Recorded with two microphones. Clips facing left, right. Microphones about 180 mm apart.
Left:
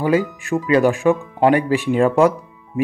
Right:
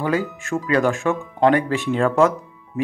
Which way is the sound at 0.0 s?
15° left (ahead or behind).